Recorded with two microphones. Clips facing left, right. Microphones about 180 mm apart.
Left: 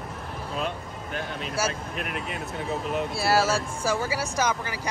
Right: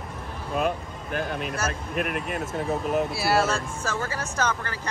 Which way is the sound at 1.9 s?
50° right (ahead or behind).